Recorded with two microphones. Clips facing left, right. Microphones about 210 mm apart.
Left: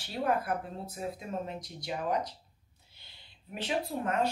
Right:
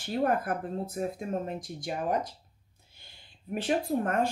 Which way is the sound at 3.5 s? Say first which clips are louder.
Right 5 dB; 50° right (ahead or behind).